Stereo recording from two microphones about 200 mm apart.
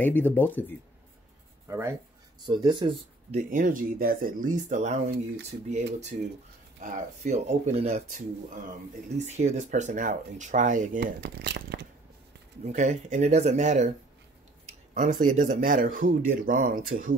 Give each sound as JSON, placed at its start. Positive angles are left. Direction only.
{"t": 0.0, "sound": "speech", "side_deg": 10}
{"t": 1.7, "sound": "speech", "side_deg": -15}
{"t": 3.3, "sound": "speech", "side_deg": -40}
{"t": 6.8, "sound": "speech", "side_deg": -40}
{"t": 12.6, "sound": "speech", "side_deg": -35}
{"t": 15.2, "sound": "speech", "side_deg": -40}